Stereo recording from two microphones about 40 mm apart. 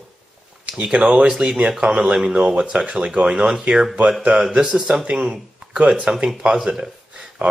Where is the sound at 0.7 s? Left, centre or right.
Right.